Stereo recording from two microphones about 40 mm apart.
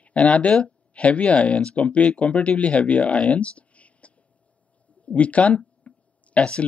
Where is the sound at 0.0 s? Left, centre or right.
Left.